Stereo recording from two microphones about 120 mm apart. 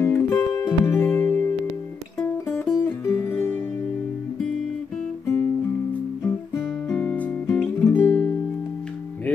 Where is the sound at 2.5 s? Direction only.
20° left (ahead or behind).